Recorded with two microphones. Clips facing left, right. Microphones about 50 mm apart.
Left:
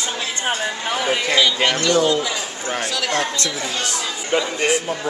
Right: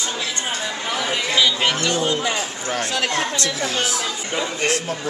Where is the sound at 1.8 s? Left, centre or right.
Right.